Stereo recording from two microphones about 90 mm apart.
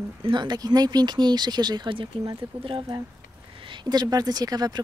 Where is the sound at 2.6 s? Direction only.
75° right (ahead or behind).